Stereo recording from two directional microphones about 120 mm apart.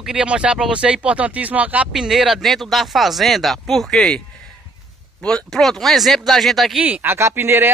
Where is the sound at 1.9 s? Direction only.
Centre (ahead or behind).